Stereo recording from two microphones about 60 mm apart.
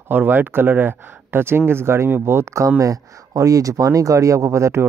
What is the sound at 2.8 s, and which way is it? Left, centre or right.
Speech, right.